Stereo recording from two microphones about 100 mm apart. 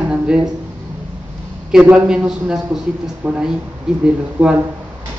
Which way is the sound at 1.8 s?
10° right (ahead or behind).